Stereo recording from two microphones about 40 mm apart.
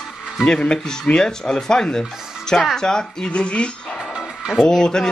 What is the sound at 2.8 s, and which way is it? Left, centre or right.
Speech, centre.